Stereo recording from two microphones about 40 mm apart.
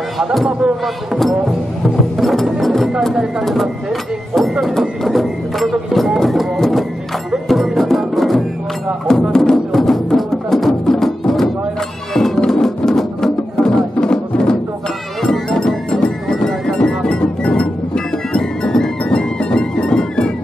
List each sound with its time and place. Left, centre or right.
0.2 s speech: centre
2.6 s music: centre
4.3 s a sound: centre
7.4 s music: centre; by 20.3 s left